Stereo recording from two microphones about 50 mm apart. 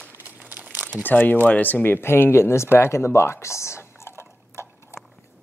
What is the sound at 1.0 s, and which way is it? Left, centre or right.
Speech, left.